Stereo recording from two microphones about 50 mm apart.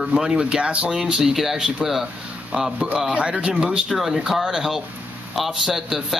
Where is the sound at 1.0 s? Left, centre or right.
Centre.